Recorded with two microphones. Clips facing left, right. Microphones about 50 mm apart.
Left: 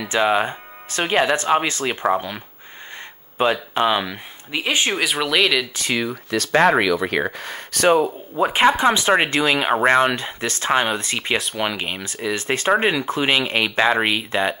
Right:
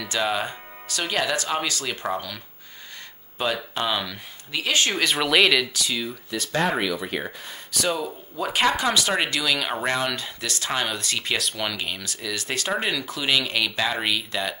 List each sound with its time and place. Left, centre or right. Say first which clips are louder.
0.0 s speech: left 7 dB; left
5.0 s speech: right 1 dB; centre
5.9 s speech: left 7 dB; left
8.4 s speech: left 6 dB; left